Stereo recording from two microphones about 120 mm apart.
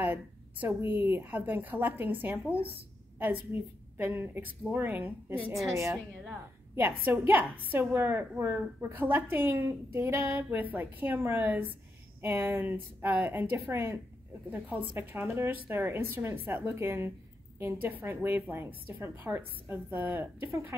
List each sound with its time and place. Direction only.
0.0 s a woman's voice: 15° right (ahead or behind)
4.0 s a woman's voice: 20° right (ahead or behind)
6.7 s a woman's voice: 20° right (ahead or behind)